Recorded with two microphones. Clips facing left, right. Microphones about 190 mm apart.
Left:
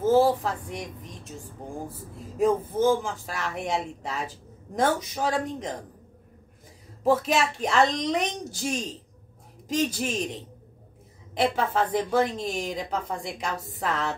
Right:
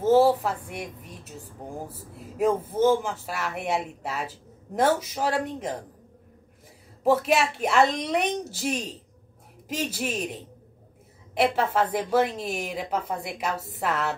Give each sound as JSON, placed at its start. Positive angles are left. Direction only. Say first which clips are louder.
{"t": 0.1, "sound": "a woman's voice", "louder": "right 3 dB", "side_deg": -5}
{"t": 2.3, "sound": "a woman's voice", "louder": "left 1 dB", "side_deg": -5}
{"t": 7.0, "sound": "a woman's voice", "louder": "right 1 dB", "side_deg": -5}
{"t": 11.3, "sound": "a woman's voice", "louder": "right 1 dB", "side_deg": -5}